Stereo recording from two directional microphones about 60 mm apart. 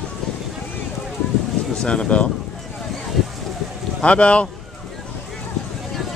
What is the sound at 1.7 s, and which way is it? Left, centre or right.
Speech, centre.